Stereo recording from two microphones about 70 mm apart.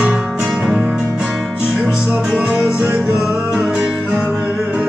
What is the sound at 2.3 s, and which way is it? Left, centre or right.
Music, centre.